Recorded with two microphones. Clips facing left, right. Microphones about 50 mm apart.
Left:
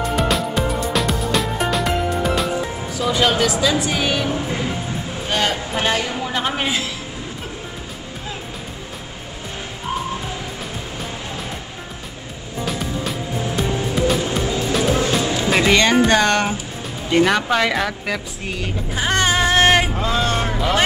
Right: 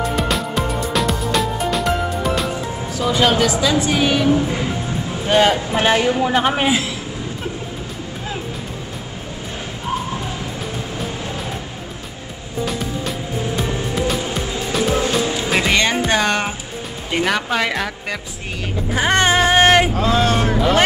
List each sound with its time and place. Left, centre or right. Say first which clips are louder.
0.1 s music: left 1 dB; centre
3.0 s speech: right 2 dB; centre
5.2 s speech: right 7 dB; centre
12.6 s music: even; centre
17.1 s speech: left 3 dB; centre
18.9 s music: right 3 dB; right
20.1 s speech: right 3 dB; centre